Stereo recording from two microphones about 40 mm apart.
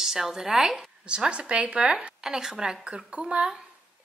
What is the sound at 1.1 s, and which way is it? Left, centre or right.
Speech, right.